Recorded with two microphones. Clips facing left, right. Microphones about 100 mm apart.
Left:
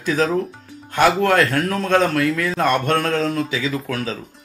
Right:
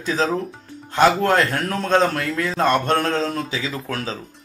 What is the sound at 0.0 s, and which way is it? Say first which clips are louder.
Speech: left 2 dB; 25° right (ahead or behind).